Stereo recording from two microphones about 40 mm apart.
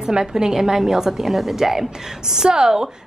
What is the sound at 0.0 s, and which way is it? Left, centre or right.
A woman's voice, centre.